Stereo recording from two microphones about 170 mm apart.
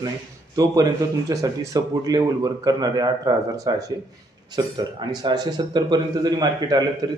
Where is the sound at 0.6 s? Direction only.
20° right (ahead or behind).